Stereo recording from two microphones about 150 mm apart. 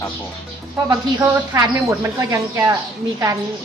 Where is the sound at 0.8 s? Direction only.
20° right (ahead or behind).